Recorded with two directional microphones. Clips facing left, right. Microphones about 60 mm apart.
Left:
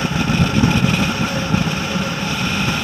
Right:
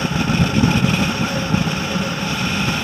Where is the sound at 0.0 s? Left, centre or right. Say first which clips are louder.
Left 1 dB; left.